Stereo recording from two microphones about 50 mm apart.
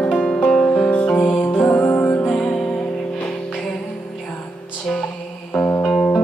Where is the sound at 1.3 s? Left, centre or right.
Left.